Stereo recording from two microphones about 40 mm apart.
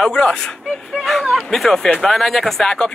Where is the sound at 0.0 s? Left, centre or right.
Centre.